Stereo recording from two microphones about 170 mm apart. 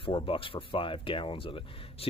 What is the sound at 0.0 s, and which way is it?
Speech, 30° left (ahead or behind).